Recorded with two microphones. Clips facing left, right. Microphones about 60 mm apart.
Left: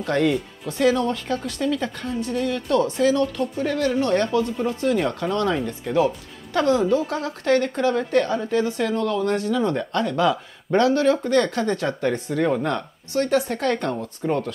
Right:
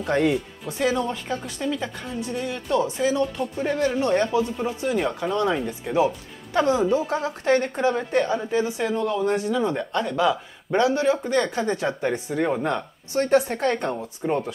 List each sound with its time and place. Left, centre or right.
0.0 s speech: centre
13.1 s speech: right